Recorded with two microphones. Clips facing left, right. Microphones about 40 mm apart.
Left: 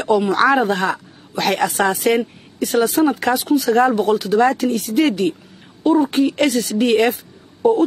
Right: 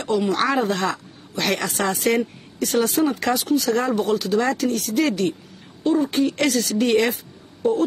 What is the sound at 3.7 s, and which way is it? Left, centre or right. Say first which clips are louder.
Speech: left 7 dB; left.